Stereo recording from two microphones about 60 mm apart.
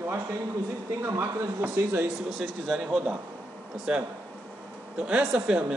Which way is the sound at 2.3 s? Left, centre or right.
Centre.